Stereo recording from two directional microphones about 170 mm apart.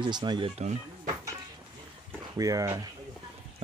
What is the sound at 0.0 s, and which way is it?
Speech, 25° right (ahead or behind).